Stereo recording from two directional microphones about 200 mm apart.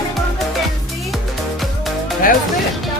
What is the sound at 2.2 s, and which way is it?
Music, 45° left (ahead or behind).